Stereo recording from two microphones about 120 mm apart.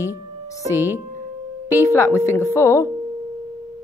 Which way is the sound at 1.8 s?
25° left (ahead or behind).